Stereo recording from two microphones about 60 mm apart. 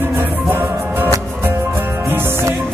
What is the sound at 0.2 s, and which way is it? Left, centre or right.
Music, right.